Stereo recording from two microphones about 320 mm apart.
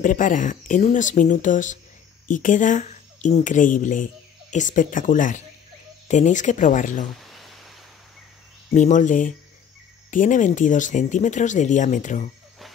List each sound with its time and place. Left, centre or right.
0.0 s speech: left
7.2 s a sound: centre
8.7 s speech: left